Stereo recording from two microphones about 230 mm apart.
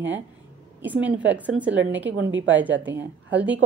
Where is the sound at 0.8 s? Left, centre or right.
Centre.